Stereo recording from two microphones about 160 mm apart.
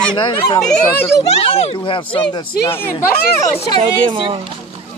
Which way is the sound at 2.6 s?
15° left (ahead or behind).